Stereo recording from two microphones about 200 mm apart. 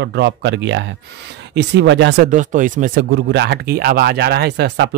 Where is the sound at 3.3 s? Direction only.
55° right (ahead or behind).